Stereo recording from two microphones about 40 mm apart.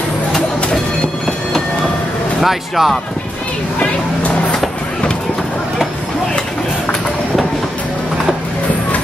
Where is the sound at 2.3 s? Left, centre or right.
Centre.